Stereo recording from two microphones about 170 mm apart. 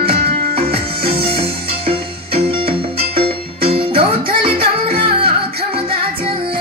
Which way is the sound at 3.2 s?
35° right (ahead or behind).